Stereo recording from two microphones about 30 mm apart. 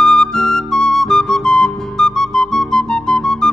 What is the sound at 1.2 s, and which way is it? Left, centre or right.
Music, left.